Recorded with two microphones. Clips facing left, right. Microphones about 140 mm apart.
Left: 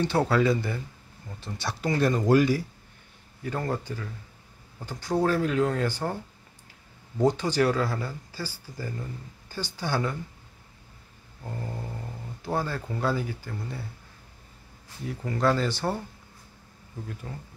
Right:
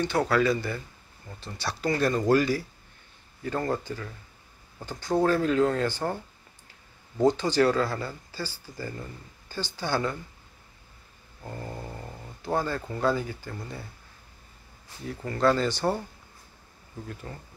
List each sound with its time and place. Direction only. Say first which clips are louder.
0.0 s speech: left 1 dB; 30° left (ahead or behind); by 6.1 s 10° left (ahead or behind)
7.2 s speech: right 1 dB; 10° left (ahead or behind)
9.5 s speech: right 1 dB; 10° left (ahead or behind)
11.4 s speech: left 1 dB; centre (ahead or behind)
15.0 s speech: right 1 dB; 10° left (ahead or behind)
17.3 s speech: left 1 dB; 5° left (ahead or behind)